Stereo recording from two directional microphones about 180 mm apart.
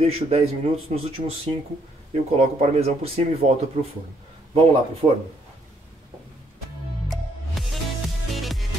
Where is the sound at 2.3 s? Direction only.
40° right (ahead or behind).